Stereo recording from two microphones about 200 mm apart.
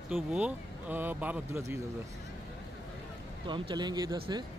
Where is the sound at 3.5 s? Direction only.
20° right (ahead or behind).